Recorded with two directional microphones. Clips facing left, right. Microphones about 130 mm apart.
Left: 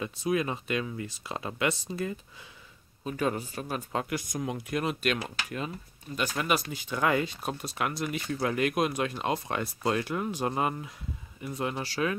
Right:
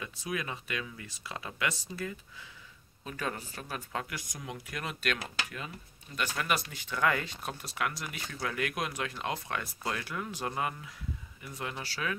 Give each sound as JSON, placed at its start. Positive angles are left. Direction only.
{"t": 0.0, "sound": "speech", "side_deg": 25}
{"t": 4.3, "sound": "speech", "side_deg": 40}
{"t": 4.6, "sound": "speech", "side_deg": 20}